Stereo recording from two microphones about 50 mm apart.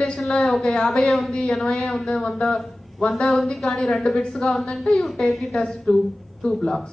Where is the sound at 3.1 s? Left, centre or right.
Centre.